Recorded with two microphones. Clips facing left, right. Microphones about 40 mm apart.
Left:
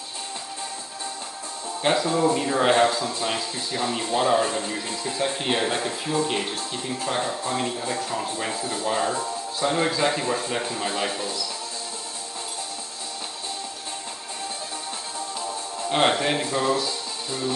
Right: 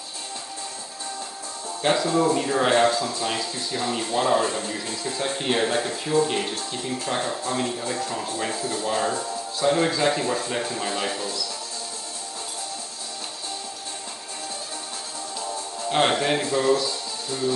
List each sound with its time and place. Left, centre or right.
1.8 s a man's voice: centre
8.5 s speech: left
9.1 s music: centre
9.7 s a man's voice: centre
15.9 s a man's voice: centre